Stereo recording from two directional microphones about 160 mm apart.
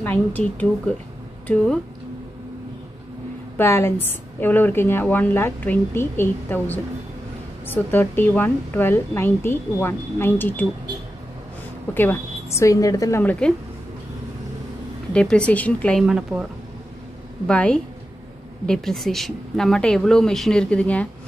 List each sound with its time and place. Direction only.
0.0 s a woman's voice: 10° left (ahead or behind)
3.5 s a woman's voice: 15° left (ahead or behind)
11.9 s a woman's voice: 15° left (ahead or behind)
13.2 s a woman's voice: 10° left (ahead or behind)
15.1 s a woman's voice: 5° left (ahead or behind)
16.0 s speech: 5° right (ahead or behind)
17.5 s a woman's voice: 5° left (ahead or behind)